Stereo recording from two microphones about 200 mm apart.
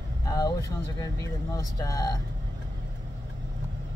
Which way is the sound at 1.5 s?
15° left (ahead or behind).